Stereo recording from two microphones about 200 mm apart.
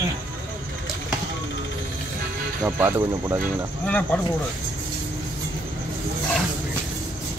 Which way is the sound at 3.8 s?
5° left (ahead or behind).